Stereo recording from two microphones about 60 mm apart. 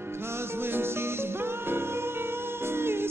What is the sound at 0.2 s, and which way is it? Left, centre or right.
Music, right.